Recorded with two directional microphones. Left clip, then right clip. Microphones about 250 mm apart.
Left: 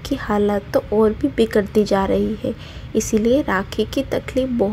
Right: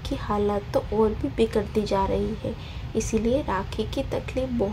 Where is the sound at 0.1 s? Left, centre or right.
Left.